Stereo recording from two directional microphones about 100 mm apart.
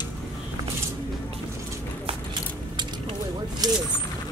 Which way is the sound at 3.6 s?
40° right (ahead or behind).